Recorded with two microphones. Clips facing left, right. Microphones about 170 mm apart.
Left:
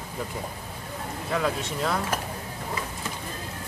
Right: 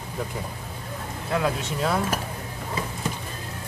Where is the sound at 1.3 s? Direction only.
5° right (ahead or behind).